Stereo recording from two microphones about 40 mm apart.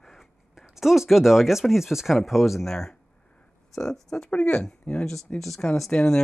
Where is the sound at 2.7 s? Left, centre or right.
Centre.